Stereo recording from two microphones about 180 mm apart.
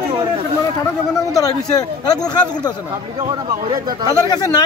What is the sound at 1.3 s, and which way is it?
Speech, 20° left (ahead or behind).